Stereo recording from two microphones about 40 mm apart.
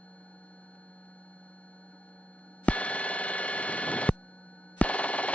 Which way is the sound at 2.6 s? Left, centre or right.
Left.